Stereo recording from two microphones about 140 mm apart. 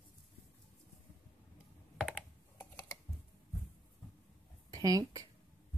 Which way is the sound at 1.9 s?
Centre (ahead or behind).